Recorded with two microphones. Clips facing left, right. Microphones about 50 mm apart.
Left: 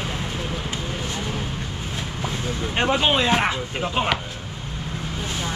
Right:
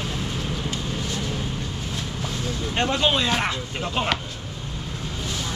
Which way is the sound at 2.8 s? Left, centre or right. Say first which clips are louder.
Left 2 dB; centre.